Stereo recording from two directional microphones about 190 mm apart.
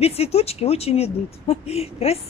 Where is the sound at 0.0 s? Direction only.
30° left (ahead or behind).